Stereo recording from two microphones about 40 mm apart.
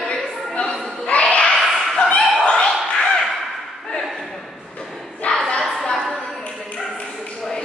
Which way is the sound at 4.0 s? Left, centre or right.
Centre.